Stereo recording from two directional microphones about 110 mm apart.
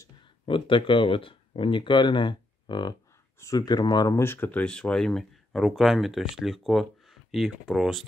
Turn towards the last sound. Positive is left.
turn(degrees=0)  # may be behind; listen again after turning